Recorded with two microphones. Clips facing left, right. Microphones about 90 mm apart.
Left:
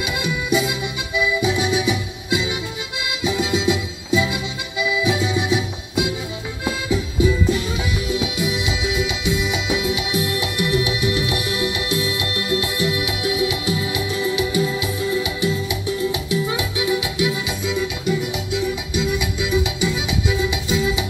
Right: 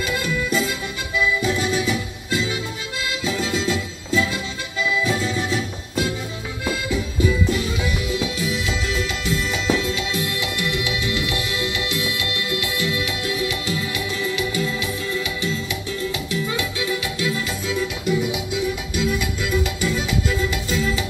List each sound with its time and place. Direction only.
0.0 s music: 10° left (ahead or behind)
18.3 s music: centre (ahead or behind)